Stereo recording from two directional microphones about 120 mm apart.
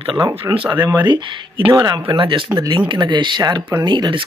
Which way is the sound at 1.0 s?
40° right (ahead or behind).